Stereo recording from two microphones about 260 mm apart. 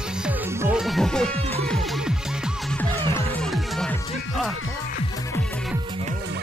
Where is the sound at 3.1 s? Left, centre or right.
Centre.